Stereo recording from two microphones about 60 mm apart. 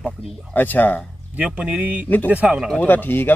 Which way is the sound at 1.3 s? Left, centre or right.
Right.